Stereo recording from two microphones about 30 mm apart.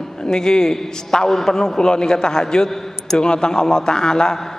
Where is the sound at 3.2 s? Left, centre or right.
Left.